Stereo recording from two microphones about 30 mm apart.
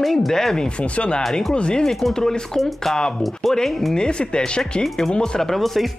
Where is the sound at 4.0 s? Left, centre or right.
Left.